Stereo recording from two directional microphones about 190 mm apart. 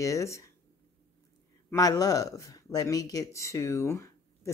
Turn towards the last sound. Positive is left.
turn(degrees=15)  # may be behind; listen again after turning